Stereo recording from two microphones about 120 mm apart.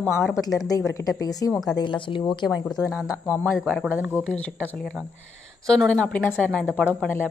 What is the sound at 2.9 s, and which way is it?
Speech, 5° right (ahead or behind).